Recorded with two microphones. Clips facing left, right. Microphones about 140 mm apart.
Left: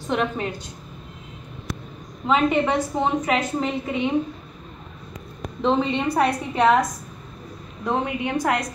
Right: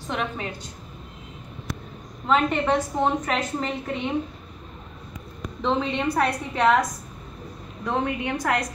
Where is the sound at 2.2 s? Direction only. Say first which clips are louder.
Left 2 dB; 5° left (ahead or behind).